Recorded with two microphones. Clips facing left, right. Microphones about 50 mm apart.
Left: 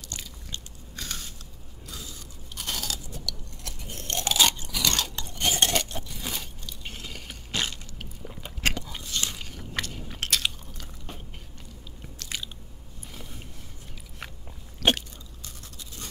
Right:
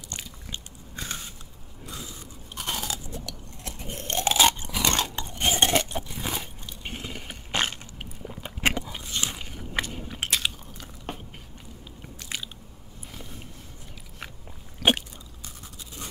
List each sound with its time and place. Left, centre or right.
0.2 s biting: right
1.9 s crunch: right
7.6 s biting: right
8.0 s biting: centre
11.1 s biting: right
12.0 s biting: centre
14.2 s biting: centre
14.8 s a sound: centre